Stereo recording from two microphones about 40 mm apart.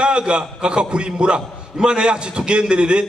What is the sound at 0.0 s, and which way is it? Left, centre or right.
A man's voice, right.